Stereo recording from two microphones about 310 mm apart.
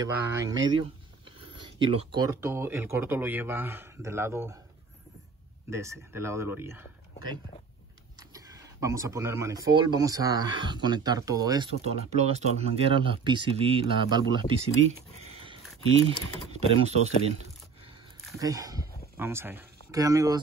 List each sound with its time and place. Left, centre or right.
0.0 s speech: centre
5.7 s speech: centre
15.2 s a sound: centre
16.1 s speech: right
17.8 s a sound: centre
19.1 s speech: centre